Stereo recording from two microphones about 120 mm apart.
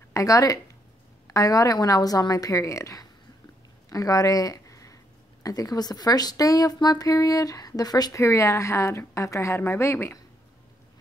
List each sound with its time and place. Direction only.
0.1 s speech: 25° left (ahead or behind)